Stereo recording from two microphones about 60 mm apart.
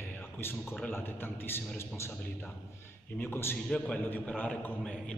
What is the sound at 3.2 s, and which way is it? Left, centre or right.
Speech, left.